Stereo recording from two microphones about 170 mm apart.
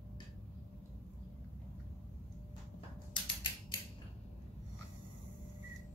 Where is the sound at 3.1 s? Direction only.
25° left (ahead or behind).